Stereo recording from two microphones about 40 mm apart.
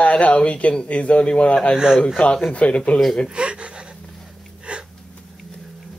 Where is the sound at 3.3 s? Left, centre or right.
Right.